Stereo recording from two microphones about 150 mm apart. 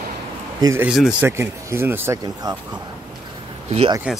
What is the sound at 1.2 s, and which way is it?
Speech, 15° right (ahead or behind).